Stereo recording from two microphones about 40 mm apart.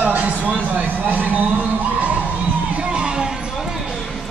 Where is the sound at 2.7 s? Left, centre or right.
Right.